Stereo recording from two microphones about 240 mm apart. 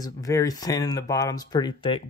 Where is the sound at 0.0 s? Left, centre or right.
Centre.